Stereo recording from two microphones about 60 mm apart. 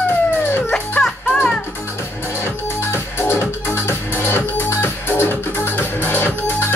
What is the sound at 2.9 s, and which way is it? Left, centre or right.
Music, left.